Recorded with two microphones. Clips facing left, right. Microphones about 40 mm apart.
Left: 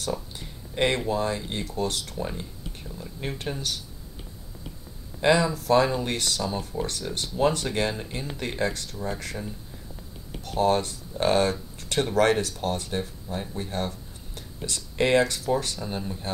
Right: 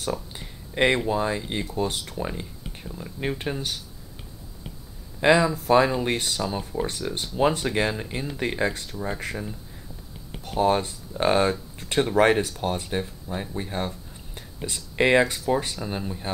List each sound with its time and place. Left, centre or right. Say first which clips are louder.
0.0 s speech: right 1 dB; centre
5.2 s speech: right 2 dB; centre